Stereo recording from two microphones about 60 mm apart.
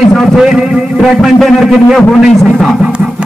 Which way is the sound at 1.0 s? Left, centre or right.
Centre.